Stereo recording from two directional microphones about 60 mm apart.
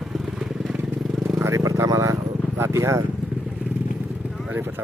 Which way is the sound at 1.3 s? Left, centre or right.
Right.